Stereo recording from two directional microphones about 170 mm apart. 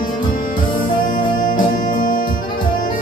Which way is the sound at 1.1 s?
50° left (ahead or behind).